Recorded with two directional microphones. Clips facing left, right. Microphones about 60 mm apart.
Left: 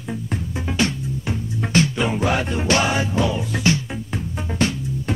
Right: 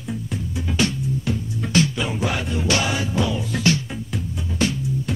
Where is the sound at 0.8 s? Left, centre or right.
Left.